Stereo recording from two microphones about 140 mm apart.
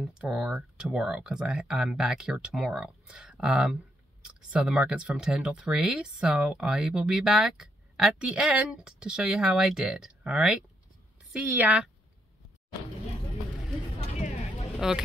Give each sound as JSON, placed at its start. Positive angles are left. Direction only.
{"t": 0.0, "sound": "speech", "side_deg": -5}
{"t": 14.1, "sound": "vehicle", "side_deg": 55}